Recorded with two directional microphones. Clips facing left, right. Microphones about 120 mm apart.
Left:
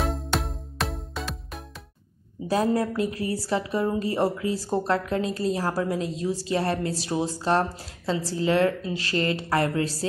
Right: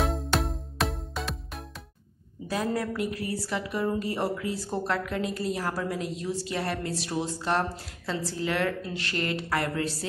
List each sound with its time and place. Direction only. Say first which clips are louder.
0.0 s music: even; centre (ahead or behind)
2.5 s a woman's voice: left 6 dB; 30° left (ahead or behind)